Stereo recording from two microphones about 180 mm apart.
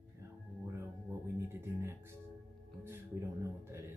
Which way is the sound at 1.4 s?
10° right (ahead or behind).